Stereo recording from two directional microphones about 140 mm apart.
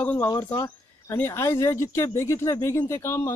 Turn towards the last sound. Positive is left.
turn(degrees=20)  # may be behind; listen again after turning